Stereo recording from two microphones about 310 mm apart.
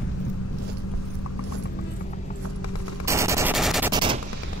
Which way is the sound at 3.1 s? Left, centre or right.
Centre.